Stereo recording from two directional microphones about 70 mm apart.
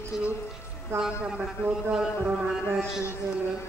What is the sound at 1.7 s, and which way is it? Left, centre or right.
Speech, centre.